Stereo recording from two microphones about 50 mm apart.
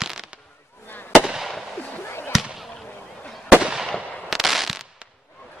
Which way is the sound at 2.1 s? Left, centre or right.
Left.